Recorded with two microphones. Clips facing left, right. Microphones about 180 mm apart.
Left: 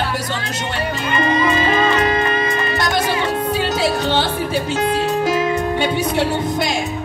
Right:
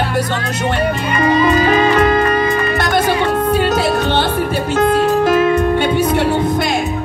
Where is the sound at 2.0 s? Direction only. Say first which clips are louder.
Right 5 dB; 50° right (ahead or behind).